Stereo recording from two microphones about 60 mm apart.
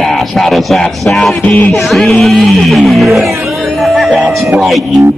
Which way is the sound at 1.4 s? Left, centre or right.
Left.